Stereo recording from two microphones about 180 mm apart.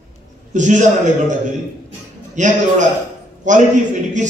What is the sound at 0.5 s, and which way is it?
A man's voice, 45° right (ahead or behind).